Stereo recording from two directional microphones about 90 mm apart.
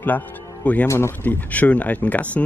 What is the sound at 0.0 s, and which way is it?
Speech, 20° left (ahead or behind).